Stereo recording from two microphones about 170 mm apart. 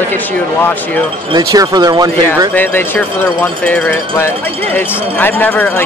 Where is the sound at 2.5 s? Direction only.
10° left (ahead or behind).